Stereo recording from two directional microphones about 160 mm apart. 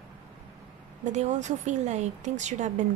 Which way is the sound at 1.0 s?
45° right (ahead or behind).